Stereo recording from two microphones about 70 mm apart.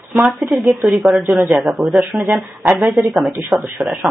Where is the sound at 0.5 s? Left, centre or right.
Centre.